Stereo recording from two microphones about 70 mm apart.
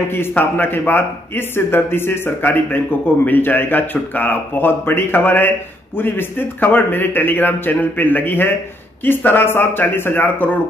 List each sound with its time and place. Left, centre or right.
0.3 s speech: left